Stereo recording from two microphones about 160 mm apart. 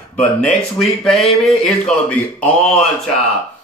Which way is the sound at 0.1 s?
5° left (ahead or behind).